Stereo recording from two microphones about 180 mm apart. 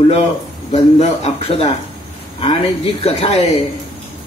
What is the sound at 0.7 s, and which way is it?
Speech, 35° left (ahead or behind).